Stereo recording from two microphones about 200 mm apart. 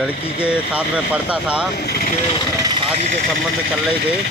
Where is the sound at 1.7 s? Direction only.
50° left (ahead or behind).